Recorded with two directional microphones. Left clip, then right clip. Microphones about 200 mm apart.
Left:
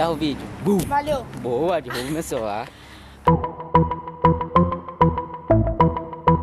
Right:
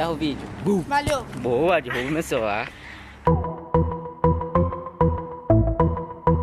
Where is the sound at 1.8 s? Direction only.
25° left (ahead or behind).